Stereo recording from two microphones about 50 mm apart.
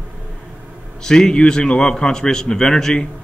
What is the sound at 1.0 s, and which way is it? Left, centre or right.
A man's voice, centre.